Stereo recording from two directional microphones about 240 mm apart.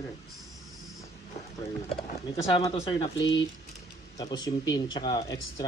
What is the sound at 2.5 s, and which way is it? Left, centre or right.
Speech, left.